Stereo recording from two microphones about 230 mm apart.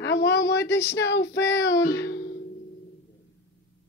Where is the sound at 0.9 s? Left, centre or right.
Left.